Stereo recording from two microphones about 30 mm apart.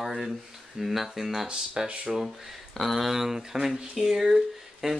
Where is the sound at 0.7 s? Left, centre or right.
Centre.